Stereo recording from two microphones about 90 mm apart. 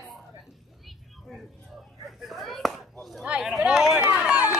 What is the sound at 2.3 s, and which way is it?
Speech, centre (ahead or behind).